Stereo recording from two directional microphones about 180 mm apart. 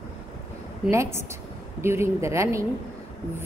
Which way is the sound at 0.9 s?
15° right (ahead or behind).